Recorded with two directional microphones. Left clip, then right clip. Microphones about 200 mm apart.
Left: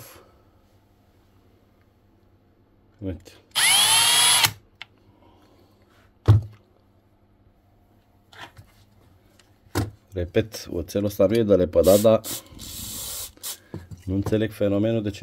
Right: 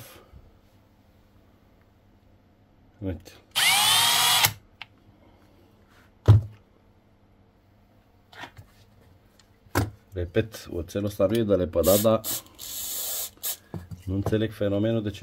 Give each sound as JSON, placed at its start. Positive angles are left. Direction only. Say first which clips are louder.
{"t": 3.0, "sound": "speech", "louder": "left 1 dB", "side_deg": 0}
{"t": 3.5, "sound": "drill", "louder": "left 2 dB", "side_deg": 15}
{"t": 10.1, "sound": "speech", "louder": "left 3 dB", "side_deg": 35}
{"t": 12.5, "sound": "ratchet", "louder": "right 1 dB", "side_deg": -10}
{"t": 13.7, "sound": "speech", "louder": "left 4 dB", "side_deg": 25}